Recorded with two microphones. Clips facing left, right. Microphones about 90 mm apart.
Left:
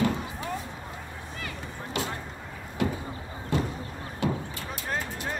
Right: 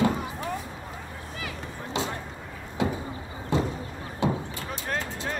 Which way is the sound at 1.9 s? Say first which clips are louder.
Right 2 dB; 25° right (ahead or behind).